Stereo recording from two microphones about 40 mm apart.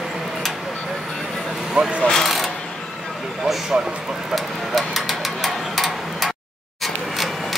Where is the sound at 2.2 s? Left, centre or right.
Centre.